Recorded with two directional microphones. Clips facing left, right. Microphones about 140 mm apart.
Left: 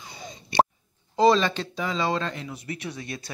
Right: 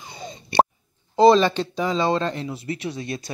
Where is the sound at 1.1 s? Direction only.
30° right (ahead or behind).